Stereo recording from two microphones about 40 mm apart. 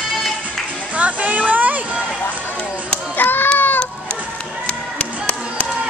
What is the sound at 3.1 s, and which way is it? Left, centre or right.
Hands, left.